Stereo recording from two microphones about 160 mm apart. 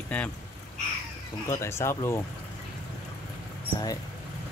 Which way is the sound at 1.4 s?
15° left (ahead or behind).